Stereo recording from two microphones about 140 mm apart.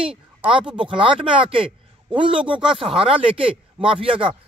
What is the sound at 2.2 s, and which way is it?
Speech, 5° right (ahead or behind).